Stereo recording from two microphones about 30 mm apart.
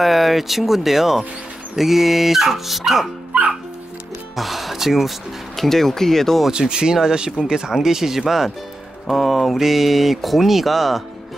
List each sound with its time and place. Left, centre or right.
0.0 s speech: centre
4.4 s speech: centre
5.6 s speech: centre
6.7 s speech: right
9.1 s speech: centre